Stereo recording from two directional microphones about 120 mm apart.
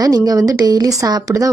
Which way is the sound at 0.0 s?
30° right (ahead or behind).